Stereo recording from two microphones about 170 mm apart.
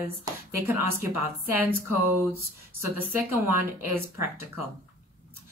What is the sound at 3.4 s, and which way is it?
Speech, 10° right (ahead or behind).